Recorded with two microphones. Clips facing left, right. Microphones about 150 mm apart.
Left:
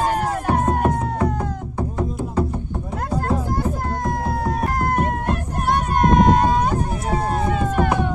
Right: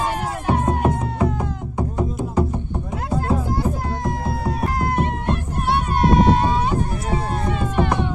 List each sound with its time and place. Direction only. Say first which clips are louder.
0.0 s music: left 3 dB; 45° left (ahead or behind)
1.8 s music: right 1 dB; 15° right (ahead or behind)
4.0 s music: left 2 dB; 45° left (ahead or behind)